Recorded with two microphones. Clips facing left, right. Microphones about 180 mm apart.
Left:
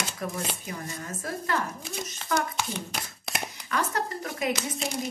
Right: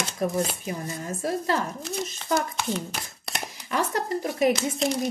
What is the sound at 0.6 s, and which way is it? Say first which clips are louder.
Speech: right 5 dB; 25° right (ahead or behind).